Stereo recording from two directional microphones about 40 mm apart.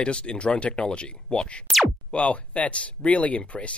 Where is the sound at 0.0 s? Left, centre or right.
Left.